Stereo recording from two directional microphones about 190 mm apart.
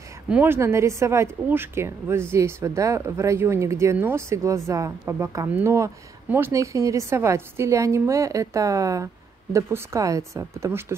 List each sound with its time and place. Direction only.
0.3 s speech: 10° right (ahead or behind)